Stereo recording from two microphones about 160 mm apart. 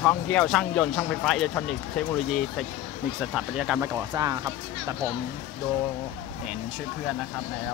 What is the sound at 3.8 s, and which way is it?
Speech, 15° right (ahead or behind).